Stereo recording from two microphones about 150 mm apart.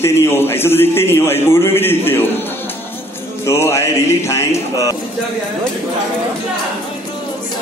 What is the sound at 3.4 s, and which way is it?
Speech, 20° left (ahead or behind).